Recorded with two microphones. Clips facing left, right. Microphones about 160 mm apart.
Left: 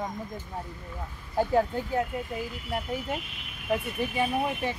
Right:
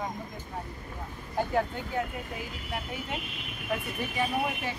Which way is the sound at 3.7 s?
30° left (ahead or behind).